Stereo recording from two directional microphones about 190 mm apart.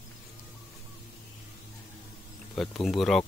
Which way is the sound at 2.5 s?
Centre (ahead or behind).